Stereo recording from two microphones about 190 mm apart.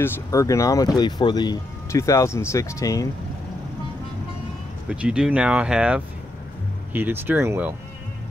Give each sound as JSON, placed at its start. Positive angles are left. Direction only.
{"t": 0.0, "sound": "speech", "side_deg": 15}
{"t": 4.8, "sound": "speech", "side_deg": -5}